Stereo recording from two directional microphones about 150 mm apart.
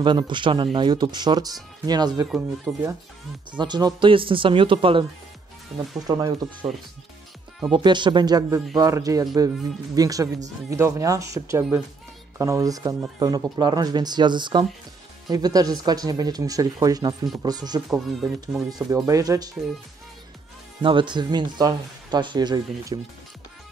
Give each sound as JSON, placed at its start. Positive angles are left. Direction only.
{"t": 0.0, "sound": "speech", "side_deg": -30}
{"t": 2.2, "sound": "speech", "side_deg": 0}
{"t": 3.5, "sound": "speech", "side_deg": -30}
{"t": 7.7, "sound": "speech", "side_deg": -30}
{"t": 17.8, "sound": "speech", "side_deg": -5}
{"t": 19.0, "sound": "speech", "side_deg": -20}
{"t": 20.8, "sound": "speech", "side_deg": -35}